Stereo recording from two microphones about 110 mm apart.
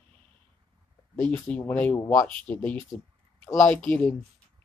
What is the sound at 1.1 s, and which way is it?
Speech, 15° left (ahead or behind).